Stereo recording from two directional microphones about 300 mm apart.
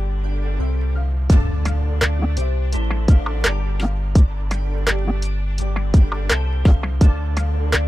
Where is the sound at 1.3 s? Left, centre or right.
Centre.